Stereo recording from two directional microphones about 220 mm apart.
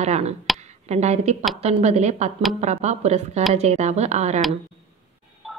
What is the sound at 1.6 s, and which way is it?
Speech, 30° right (ahead or behind).